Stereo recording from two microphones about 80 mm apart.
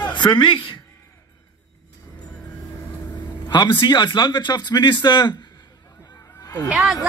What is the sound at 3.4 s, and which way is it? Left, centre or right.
Speech, left.